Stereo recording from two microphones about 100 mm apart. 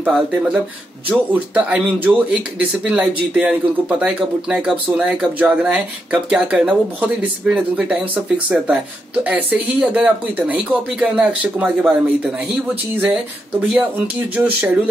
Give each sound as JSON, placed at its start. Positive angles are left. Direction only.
{"t": 0.0, "sound": "speech", "side_deg": -10}
{"t": 13.5, "sound": "speech", "side_deg": -15}